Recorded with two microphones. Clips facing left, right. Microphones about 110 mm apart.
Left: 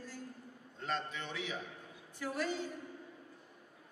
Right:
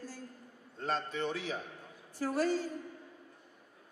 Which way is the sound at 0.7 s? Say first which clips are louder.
Right 4 dB; 40° right (ahead or behind).